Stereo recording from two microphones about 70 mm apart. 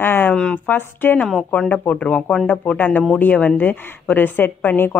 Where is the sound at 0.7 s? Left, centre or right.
Left.